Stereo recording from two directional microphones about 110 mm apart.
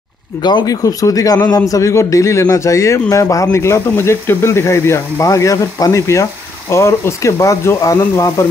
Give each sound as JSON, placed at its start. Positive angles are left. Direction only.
{"t": 0.4, "sound": "a man's voice", "side_deg": 40}